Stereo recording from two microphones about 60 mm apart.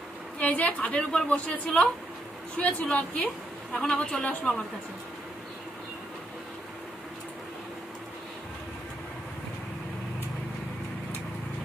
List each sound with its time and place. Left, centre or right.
0.4 s a woman's voice: left
3.7 s a woman's voice: centre